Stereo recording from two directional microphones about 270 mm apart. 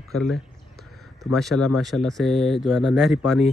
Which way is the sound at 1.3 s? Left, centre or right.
Centre.